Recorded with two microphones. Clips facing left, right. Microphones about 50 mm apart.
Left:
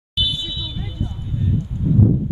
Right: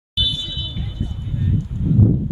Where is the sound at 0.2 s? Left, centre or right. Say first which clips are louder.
Even; centre.